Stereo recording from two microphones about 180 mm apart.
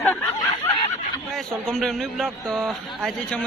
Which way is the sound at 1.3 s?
Centre (ahead or behind).